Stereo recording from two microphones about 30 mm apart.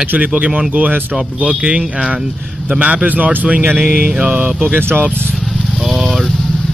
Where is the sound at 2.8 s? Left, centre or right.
Right.